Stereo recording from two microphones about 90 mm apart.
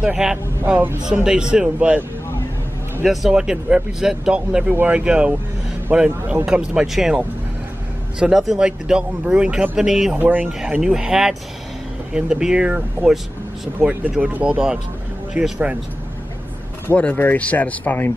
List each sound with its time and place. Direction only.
0.0 s a man's voice: 10° right (ahead or behind)
8.2 s a man's voice: 5° right (ahead or behind)
10.1 s a man's voice: 20° right (ahead or behind)
16.8 s speech: 15° left (ahead or behind)